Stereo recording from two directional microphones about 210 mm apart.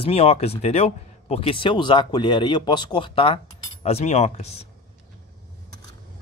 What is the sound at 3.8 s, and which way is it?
Cutlery, 30° left (ahead or behind).